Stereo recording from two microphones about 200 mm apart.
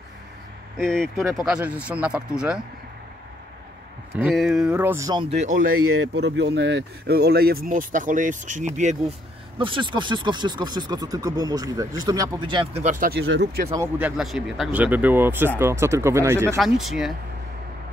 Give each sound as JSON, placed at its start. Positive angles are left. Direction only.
{"t": 0.7, "sound": "speech", "side_deg": 5}
{"t": 4.1, "sound": "speech", "side_deg": -5}
{"t": 5.8, "sound": "speech", "side_deg": -90}
{"t": 9.6, "sound": "speech", "side_deg": -25}
{"t": 12.8, "sound": "speech", "side_deg": -45}
{"t": 13.7, "sound": "speech", "side_deg": -10}
{"t": 16.5, "sound": "speech", "side_deg": 0}